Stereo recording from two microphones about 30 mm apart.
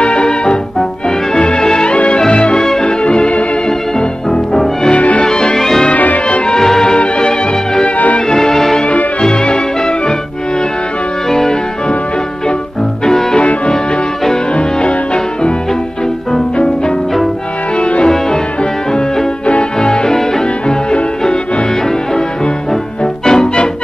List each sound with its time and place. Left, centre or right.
0.0 s music: left; by 2.8 s centre
2.8 s music: left
4.9 s music: left
5.2 s music: left
5.6 s music: centre
5.9 s music: left
6.4 s music: left
8.3 s music: centre
9.2 s music: left
11.2 s music: centre
13.0 s music: left
17.7 s music: left
19.8 s music: left
23.2 s music: centre